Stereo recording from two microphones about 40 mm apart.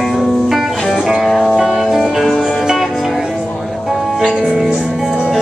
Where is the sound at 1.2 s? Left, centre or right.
Centre.